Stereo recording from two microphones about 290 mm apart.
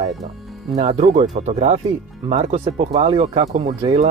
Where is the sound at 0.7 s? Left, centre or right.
Right.